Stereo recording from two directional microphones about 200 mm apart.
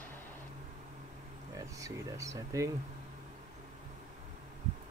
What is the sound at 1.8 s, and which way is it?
Speech, 15° right (ahead or behind).